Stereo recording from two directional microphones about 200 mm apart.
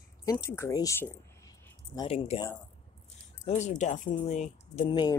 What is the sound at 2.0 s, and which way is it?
Speech, 30° left (ahead or behind).